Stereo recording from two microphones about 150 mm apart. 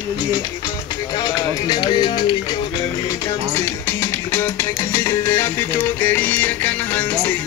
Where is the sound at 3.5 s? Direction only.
15° left (ahead or behind).